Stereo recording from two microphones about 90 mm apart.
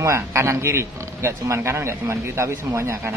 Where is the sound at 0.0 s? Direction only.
30° right (ahead or behind).